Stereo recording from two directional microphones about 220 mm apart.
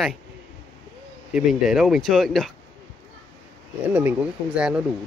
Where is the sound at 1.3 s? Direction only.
Centre (ahead or behind).